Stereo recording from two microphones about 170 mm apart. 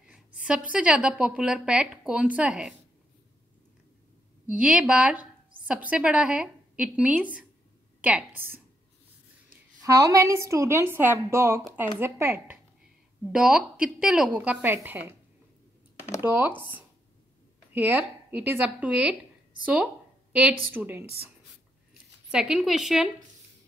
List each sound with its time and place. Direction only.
0.1 s a woman's voice: 5° right (ahead or behind)
4.5 s a woman's voice: 5° right (ahead or behind)
9.8 s a woman's voice: 20° right (ahead or behind)
16.2 s a woman's voice: 10° right (ahead or behind)
22.3 s a woman's voice: 5° right (ahead or behind)